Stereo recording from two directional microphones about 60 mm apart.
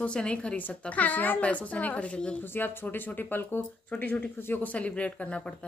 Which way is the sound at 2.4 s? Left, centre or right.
Left.